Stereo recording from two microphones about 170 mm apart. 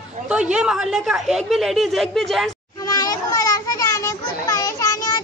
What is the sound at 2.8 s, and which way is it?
Children playing, 20° left (ahead or behind).